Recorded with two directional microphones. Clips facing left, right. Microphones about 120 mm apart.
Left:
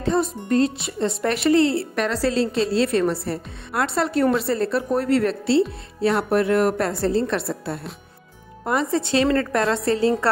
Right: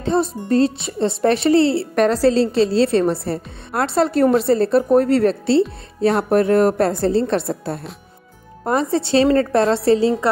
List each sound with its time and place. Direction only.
0.0 s a woman's voice: 30° right (ahead or behind)